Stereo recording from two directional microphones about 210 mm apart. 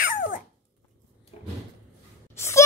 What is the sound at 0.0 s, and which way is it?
Dog, 40° left (ahead or behind).